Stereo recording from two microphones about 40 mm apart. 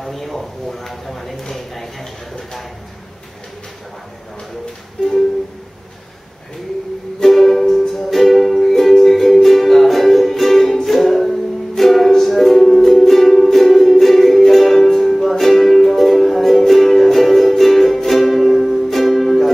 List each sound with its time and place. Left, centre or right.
0.0 s speech: centre
1.5 s a sound: centre
5.0 s music: centre
7.2 s music: centre